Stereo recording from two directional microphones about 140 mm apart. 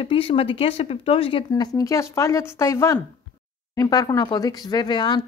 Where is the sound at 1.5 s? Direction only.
25° left (ahead or behind).